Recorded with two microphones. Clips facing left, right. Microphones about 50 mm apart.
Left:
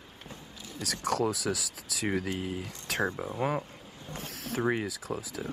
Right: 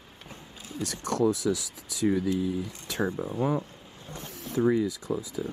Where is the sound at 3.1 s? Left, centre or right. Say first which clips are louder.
Right 3 dB; left.